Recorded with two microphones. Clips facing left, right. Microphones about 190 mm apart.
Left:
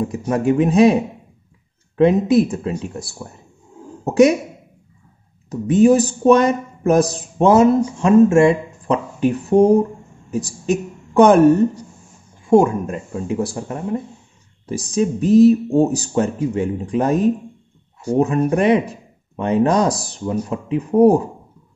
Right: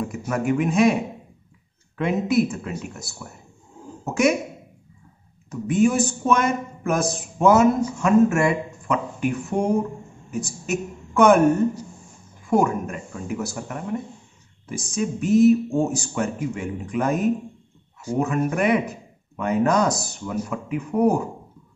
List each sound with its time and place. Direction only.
0.3 s speech: 30° left (ahead or behind)
2.0 s speech: 30° left (ahead or behind)
5.5 s speech: 35° left (ahead or behind)